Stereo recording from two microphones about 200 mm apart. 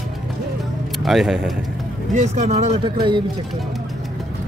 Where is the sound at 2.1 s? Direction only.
35° right (ahead or behind).